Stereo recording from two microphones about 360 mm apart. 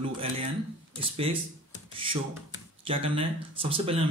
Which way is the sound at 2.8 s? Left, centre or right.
Centre.